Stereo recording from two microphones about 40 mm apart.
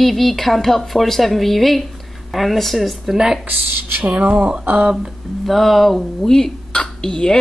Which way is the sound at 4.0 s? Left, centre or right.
Right.